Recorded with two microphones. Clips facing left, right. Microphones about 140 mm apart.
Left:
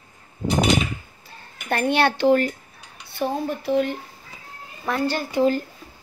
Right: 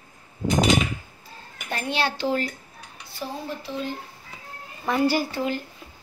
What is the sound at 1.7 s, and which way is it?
Speech, 60° left (ahead or behind).